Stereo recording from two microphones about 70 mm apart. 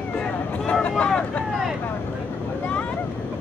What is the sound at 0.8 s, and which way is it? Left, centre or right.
Vehicle, centre.